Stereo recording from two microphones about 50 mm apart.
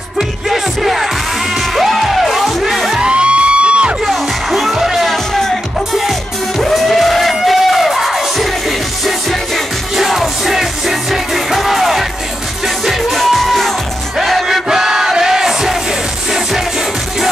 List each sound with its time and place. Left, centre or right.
0.5 s music: centre
3.0 s music: right
4.0 s music: centre
6.6 s music: centre
9.9 s music: centre
14.1 s battle cry: centre